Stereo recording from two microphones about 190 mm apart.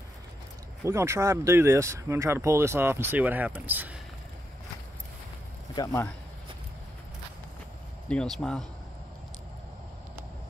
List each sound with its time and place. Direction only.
0.8 s speech: 15° right (ahead or behind)
5.8 s speech: 20° left (ahead or behind)
8.1 s speech: 5° left (ahead or behind)